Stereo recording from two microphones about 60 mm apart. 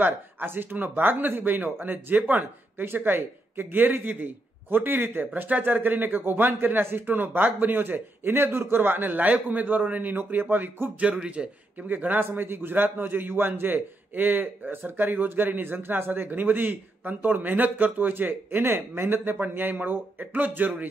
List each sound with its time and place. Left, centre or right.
0.0 s speech: right
11.0 s speech: right